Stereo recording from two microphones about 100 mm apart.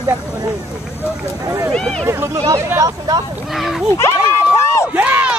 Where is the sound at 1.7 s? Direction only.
10° left (ahead or behind).